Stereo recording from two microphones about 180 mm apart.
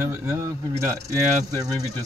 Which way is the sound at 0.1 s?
15° right (ahead or behind).